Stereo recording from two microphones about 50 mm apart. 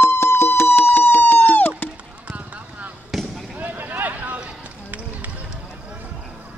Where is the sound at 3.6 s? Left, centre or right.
Right.